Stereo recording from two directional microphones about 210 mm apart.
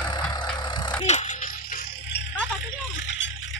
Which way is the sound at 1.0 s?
35° left (ahead or behind).